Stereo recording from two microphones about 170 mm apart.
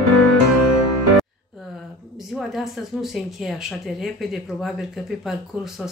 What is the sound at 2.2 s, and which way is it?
Speech, centre (ahead or behind).